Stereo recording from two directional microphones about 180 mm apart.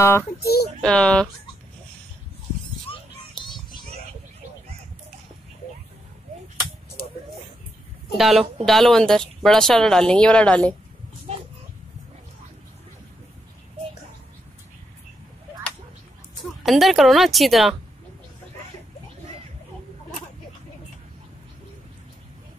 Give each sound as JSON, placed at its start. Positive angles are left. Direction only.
{"t": 0.0, "sound": "speech", "side_deg": 15}
{"t": 0.4, "sound": "speech", "side_deg": 60}
{"t": 0.7, "sound": "speech", "side_deg": 5}
{"t": 8.2, "sound": "speech", "side_deg": 0}
{"t": 11.3, "sound": "a sound", "side_deg": -40}
{"t": 16.6, "sound": "speech", "side_deg": 0}